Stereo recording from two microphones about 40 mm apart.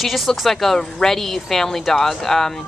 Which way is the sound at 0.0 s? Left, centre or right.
Centre.